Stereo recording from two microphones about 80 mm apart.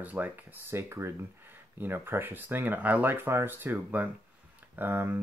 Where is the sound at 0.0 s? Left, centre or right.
Right.